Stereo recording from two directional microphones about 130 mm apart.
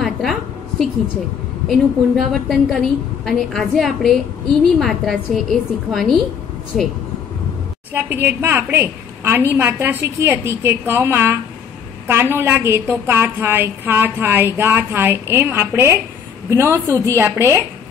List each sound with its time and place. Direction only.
0.0 s a sound: centre (ahead or behind)
1.7 s a woman's voice: centre (ahead or behind)
7.9 s a woman's voice: 15° right (ahead or behind)